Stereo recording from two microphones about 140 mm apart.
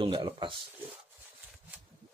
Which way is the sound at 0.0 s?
35° right (ahead or behind).